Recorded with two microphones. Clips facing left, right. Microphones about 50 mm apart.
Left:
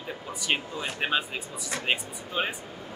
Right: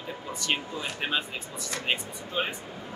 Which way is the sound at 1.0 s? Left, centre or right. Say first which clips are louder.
Left 3 dB; centre.